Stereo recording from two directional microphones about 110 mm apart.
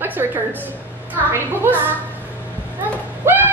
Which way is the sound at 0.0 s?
20° right (ahead or behind).